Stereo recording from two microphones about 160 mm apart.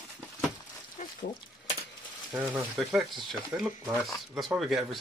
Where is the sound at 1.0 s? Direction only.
50° left (ahead or behind).